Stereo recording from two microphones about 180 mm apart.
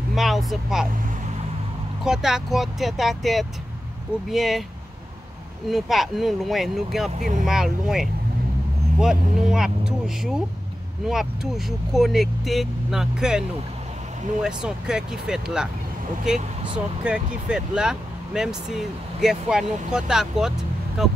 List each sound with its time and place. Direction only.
0.1 s speech: centre (ahead or behind)
2.0 s speech: centre (ahead or behind)
5.7 s speech: centre (ahead or behind)
7.2 s speech: 45° right (ahead or behind)
7.4 s speech: centre (ahead or behind)
14.4 s speech: 5° right (ahead or behind)